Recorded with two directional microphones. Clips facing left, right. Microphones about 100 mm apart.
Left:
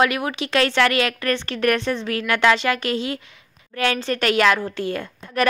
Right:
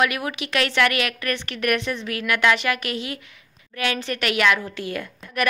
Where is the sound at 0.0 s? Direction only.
30° left (ahead or behind).